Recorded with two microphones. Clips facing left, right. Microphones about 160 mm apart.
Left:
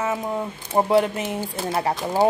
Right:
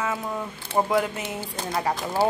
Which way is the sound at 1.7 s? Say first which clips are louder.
Left 2 dB; 30° left (ahead or behind).